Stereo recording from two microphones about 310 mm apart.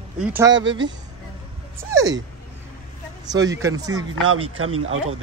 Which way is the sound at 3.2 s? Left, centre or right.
Centre.